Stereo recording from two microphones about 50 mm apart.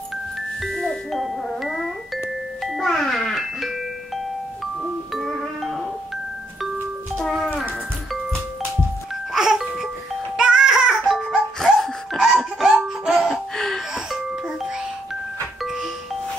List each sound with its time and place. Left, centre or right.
0.6 s glockenspiel: centre
5.1 s music: centre
7.2 s music: centre
9.3 s music: centre
11.6 s laughter: centre